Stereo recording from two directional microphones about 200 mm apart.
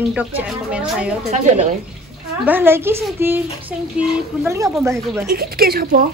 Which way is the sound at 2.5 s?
10° right (ahead or behind).